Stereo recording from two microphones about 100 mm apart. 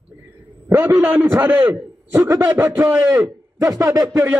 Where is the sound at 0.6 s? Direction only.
25° right (ahead or behind).